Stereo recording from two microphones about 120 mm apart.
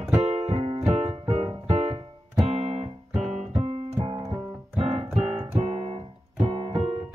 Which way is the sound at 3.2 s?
Centre (ahead or behind).